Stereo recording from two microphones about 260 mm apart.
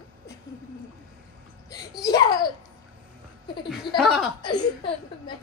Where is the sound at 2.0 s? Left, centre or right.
Centre.